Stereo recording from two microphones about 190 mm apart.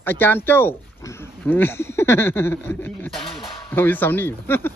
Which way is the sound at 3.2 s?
30° left (ahead or behind).